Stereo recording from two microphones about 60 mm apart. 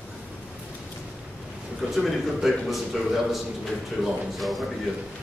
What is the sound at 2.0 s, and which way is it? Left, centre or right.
A man's voice, centre.